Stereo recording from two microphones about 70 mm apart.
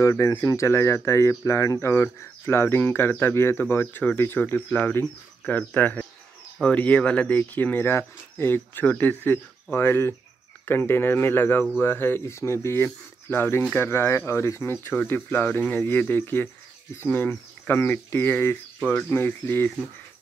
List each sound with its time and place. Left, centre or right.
0.0 s speech: left
14.6 s speech: left